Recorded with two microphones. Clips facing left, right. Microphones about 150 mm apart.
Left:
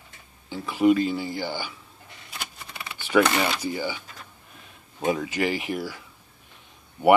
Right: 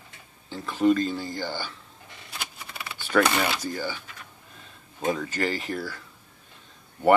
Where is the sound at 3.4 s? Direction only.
10° left (ahead or behind).